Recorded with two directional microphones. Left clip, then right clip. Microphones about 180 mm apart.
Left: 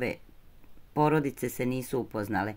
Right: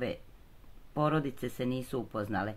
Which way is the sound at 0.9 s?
15° left (ahead or behind).